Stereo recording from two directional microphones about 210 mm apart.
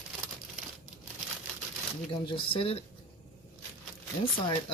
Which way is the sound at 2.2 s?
25° left (ahead or behind).